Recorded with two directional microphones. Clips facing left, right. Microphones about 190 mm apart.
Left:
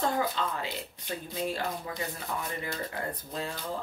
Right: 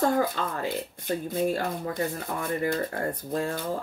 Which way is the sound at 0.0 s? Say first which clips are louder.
Right 5 dB; 50° right (ahead or behind).